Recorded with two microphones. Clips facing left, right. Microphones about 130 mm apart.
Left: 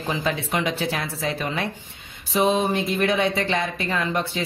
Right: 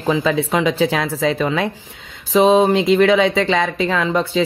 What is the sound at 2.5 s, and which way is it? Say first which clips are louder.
Speech: right 9 dB; 90° right.